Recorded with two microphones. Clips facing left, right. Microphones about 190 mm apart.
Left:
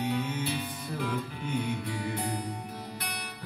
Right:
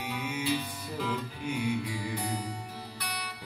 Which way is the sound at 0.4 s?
55° left (ahead or behind).